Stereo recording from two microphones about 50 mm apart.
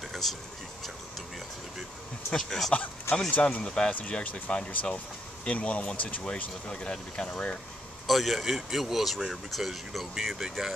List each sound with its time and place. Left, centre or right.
0.1 s a sound: centre
2.3 s speech: centre
3.3 s speech: left
3.6 s speech: centre
8.1 s speech: centre